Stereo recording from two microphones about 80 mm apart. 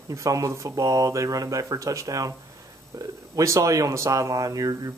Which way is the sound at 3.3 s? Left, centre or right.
Right.